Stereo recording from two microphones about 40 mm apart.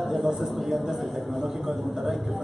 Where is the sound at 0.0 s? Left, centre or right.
Centre.